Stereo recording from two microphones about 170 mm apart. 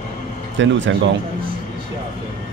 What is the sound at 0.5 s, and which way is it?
Speech, 90° right.